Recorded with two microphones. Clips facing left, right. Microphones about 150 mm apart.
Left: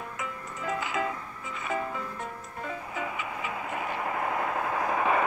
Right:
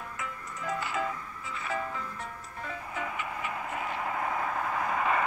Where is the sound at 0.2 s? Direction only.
10° left (ahead or behind).